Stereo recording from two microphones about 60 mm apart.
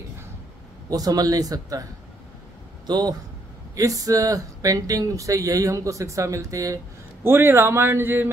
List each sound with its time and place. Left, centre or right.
0.8 s a man's voice: right
3.7 s speech: right
7.2 s speech: right